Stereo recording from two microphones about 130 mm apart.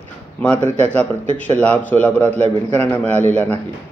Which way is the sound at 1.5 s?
10° left (ahead or behind).